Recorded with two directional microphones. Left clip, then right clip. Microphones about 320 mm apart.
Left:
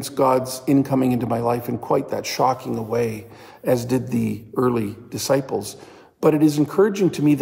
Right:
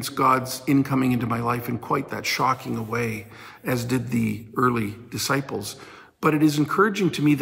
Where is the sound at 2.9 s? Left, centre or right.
Centre.